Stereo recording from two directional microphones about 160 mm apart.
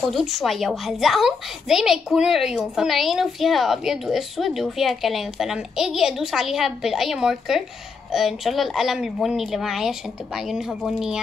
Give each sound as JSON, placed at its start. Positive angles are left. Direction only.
{"t": 0.1, "sound": "a woman's voice", "side_deg": 0}